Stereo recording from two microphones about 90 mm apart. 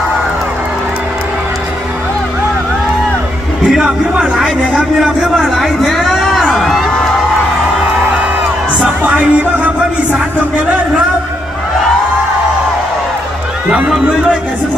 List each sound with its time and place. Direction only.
3.7 s a sound: 5° right (ahead or behind)
8.7 s music: 10° right (ahead or behind)
13.7 s music: 10° right (ahead or behind)